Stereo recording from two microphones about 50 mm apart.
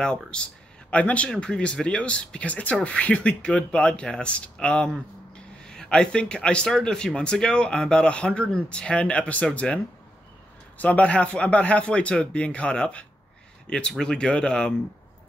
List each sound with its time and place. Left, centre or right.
0.0 s speech: centre
10.8 s speech: left